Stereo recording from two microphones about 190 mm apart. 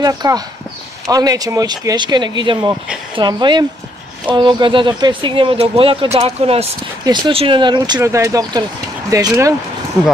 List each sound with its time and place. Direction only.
0.0 s speech: 20° right (ahead or behind)